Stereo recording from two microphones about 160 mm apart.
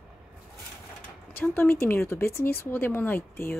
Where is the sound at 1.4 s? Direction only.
15° left (ahead or behind).